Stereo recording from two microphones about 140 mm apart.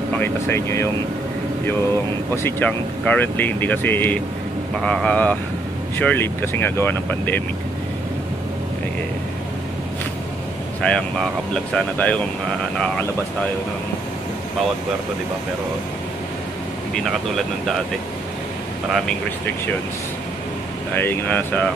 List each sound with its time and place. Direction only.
0.2 s speech: 15° left (ahead or behind)
2.3 s speech: 15° left (ahead or behind)
10.8 s speech: 5° left (ahead or behind)
16.9 s speech: centre (ahead or behind)
20.9 s speech: 15° left (ahead or behind)